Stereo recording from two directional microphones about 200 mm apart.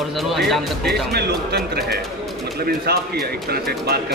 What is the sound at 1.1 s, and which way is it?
Speech, 55° right (ahead or behind).